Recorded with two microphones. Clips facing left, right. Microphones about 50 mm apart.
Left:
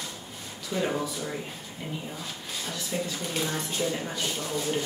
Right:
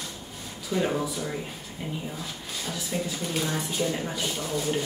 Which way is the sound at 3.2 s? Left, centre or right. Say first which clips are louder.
Right 2 dB; centre.